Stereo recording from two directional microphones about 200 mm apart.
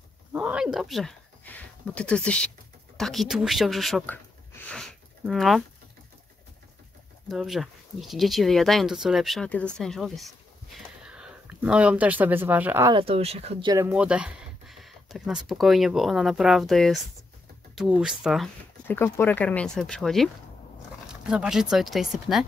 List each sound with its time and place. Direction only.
0.3 s speech: 5° right (ahead or behind)
7.2 s speech: centre (ahead or behind)
12.9 s speech: 30° right (ahead or behind)
13.7 s speech: 10° right (ahead or behind)
18.9 s speech: 10° left (ahead or behind)
21.3 s speech: 5° right (ahead or behind)